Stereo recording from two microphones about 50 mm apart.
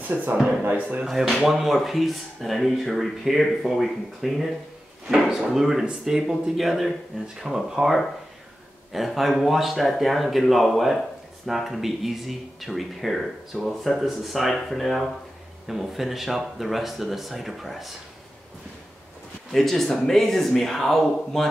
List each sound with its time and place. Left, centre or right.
0.0 s speech: right
1.0 s speech: centre
19.5 s speech: centre